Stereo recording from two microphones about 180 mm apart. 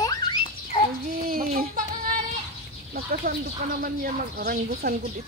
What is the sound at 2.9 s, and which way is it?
Chicken, 55° right (ahead or behind).